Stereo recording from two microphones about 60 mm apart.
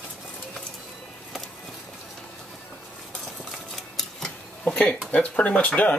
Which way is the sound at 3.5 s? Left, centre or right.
Centre.